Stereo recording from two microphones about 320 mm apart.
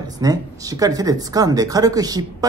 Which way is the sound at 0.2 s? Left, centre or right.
Centre.